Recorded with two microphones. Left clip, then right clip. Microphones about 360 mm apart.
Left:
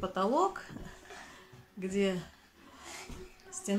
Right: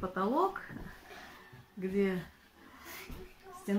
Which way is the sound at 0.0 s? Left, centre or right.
Centre.